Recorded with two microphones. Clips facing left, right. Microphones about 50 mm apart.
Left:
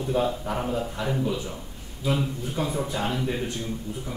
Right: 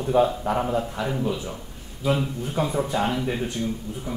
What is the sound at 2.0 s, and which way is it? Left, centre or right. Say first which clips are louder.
Speech: right 2 dB; centre.